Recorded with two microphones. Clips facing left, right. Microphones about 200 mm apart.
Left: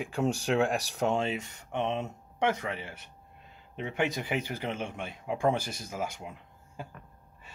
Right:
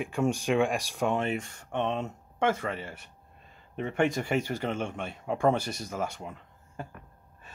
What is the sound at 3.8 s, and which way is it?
Speech, 10° left (ahead or behind).